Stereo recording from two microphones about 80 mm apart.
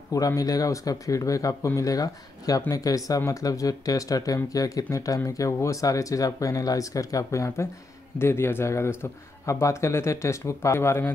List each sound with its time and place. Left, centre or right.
0.4 s speech: left